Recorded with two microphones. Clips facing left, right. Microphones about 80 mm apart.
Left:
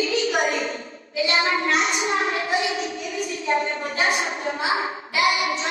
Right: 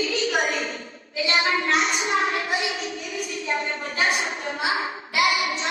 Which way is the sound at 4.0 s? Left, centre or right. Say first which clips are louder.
Left 1 dB; left.